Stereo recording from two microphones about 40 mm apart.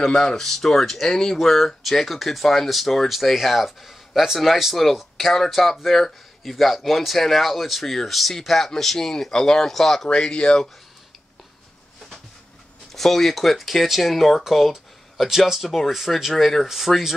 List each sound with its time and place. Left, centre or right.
0.0 s speech: centre
10.0 s speech: left
12.9 s speech: centre